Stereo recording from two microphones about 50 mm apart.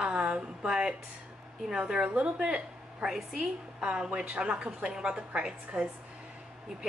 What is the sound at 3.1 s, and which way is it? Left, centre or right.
A woman's voice, centre.